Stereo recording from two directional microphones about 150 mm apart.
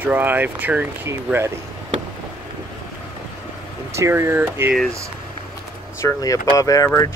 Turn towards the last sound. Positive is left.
turn(degrees=20)  # may be behind; listen again after turning